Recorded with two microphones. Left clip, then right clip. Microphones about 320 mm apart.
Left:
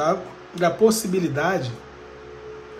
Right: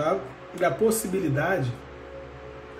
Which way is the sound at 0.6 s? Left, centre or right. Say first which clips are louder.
Left 4 dB; centre.